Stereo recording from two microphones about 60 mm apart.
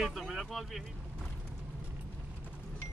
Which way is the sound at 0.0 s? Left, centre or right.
Centre.